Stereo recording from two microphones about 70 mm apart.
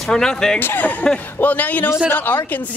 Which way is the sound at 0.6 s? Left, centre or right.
Left.